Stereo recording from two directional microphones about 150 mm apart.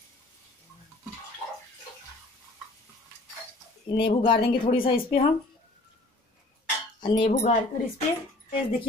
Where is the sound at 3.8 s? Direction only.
35° left (ahead or behind).